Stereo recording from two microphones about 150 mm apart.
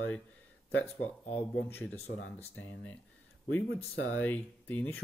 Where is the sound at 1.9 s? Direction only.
45° left (ahead or behind).